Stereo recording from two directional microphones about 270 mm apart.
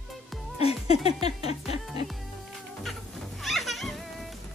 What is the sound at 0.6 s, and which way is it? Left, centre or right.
Music, left.